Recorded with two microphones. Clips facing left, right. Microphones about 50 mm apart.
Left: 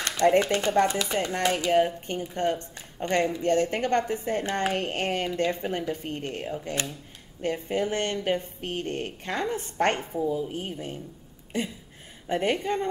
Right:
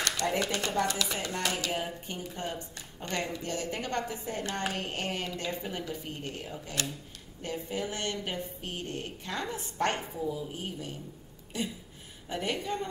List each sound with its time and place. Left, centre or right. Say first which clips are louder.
0.4 s speech: left 7 dB; left
1.7 s speech: left 11 dB; left
4.7 s speech: left 7 dB; left
6.6 s a woman's voice: left 4 dB; left
10.1 s speech: left 7 dB; left
10.5 s a woman's voice: left 5 dB; left
12.3 s a woman's voice: left 7 dB; left